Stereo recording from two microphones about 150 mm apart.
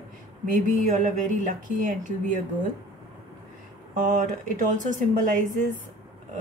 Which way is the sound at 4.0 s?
60° right (ahead or behind).